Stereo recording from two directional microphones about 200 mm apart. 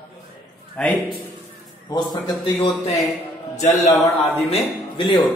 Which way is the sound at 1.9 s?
20° left (ahead or behind).